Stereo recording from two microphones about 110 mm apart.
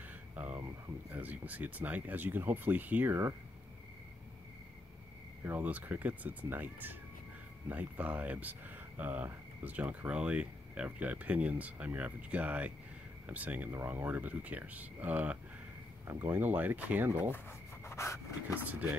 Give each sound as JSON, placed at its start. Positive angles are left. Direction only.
{"t": 1.1, "sound": "speech", "side_deg": -15}
{"t": 5.4, "sound": "speech", "side_deg": -15}
{"t": 17.8, "sound": "rub", "side_deg": 25}
{"t": 18.6, "sound": "speech", "side_deg": -15}